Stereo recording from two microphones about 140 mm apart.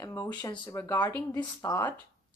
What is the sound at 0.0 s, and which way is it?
A woman's voice, 20° left (ahead or behind).